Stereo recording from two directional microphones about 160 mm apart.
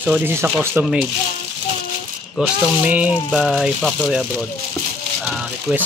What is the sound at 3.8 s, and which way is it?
Speech, 5° left (ahead or behind).